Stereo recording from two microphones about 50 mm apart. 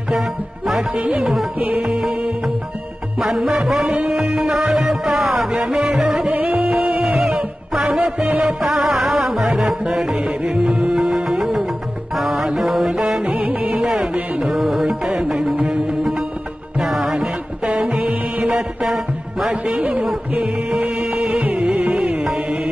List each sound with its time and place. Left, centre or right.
0.2 s music: centre
0.9 s music: right
1.2 s music: centre
1.6 s music: right
2.0 s music: centre
12.9 s music: centre
13.3 s music: right
14.5 s music: centre
17.6 s music: right